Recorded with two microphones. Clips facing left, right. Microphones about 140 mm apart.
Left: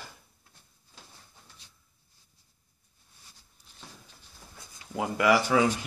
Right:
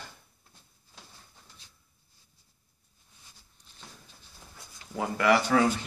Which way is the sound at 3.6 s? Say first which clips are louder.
Even; 10° left (ahead or behind).